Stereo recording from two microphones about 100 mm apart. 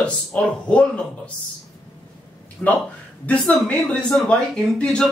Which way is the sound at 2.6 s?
5° left (ahead or behind).